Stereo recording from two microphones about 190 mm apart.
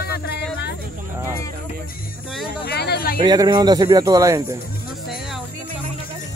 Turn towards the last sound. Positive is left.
turn(degrees=-20)  # may be behind; listen again after turning